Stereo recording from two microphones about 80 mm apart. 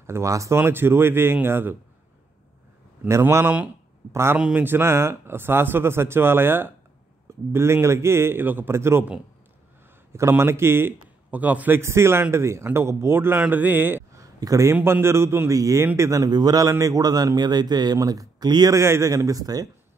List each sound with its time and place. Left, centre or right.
0.0 s a man's voice: right
3.1 s a man's voice: right
3.4 s speech: centre
4.1 s a man's voice: right
10.1 s a man's voice: right
11.8 s a man's voice: right
14.1 s a sound: right
14.7 s a man's voice: right
16.1 s a man's voice: right
16.6 s speech: right
18.7 s a man's voice: right
19.1 s speech: right